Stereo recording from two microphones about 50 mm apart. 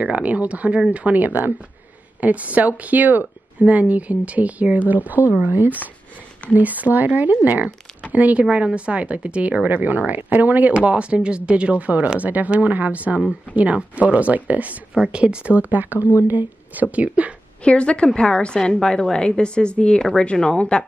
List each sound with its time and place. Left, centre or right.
0.0 s a woman's voice: right
8.5 s a woman's voice: right
10.9 s a woman's voice: right
17.6 s a woman's voice: left
20.0 s speech: centre
20.5 s a woman's voice: left